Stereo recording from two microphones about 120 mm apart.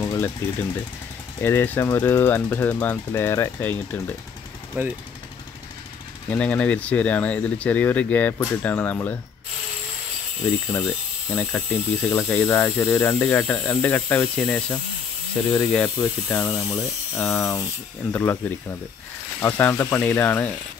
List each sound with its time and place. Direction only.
0.0 s jackhammer: 25° left (ahead or behind)
1.4 s speech: 15° left (ahead or behind)
4.8 s speech: 15° right (ahead or behind)
6.3 s speech: 10° left (ahead or behind)
10.7 s speech: 15° left (ahead or behind)